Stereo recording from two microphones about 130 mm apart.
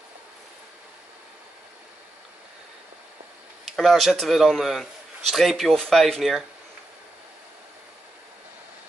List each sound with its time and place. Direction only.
3.6 s speech: centre (ahead or behind)